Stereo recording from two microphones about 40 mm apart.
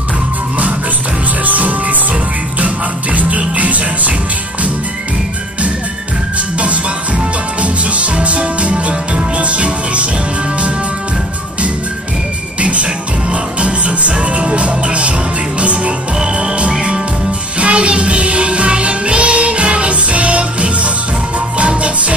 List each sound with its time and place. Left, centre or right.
1.4 s music: right
7.6 s music: right
12.5 s music: right